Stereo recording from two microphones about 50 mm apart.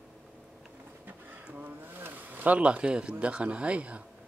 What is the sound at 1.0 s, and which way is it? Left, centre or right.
Speech, right.